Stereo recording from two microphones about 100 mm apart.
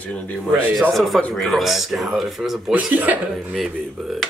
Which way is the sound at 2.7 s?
15° right (ahead or behind).